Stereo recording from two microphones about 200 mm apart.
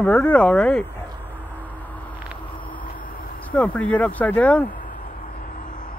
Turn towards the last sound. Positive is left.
turn(degrees=5)  # may be behind; listen again after turning